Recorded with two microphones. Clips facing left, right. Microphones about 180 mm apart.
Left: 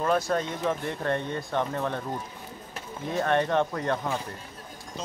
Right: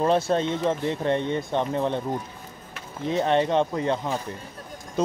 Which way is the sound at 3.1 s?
20° right (ahead or behind).